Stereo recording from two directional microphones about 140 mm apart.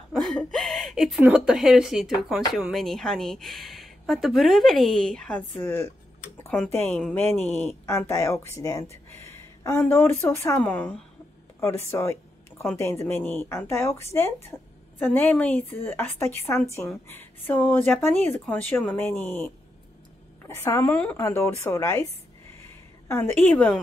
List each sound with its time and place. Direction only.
0.1 s a woman's voice: centre (ahead or behind)
20.4 s a woman's voice: 20° left (ahead or behind)